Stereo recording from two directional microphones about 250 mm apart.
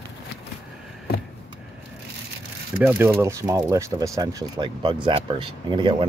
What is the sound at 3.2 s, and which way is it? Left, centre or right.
Speech, centre.